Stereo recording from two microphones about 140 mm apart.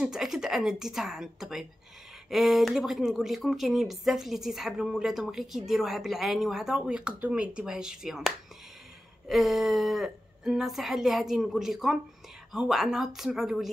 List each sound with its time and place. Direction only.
0.0 s speech: centre (ahead or behind)
9.3 s speech: centre (ahead or behind)